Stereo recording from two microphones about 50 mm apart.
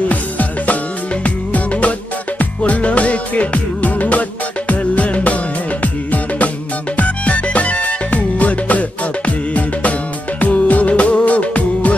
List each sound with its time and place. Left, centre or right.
0.1 s music: left